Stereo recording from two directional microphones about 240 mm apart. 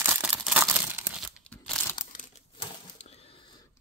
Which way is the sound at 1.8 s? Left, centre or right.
Centre.